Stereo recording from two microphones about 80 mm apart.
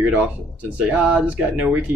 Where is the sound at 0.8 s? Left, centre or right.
Centre.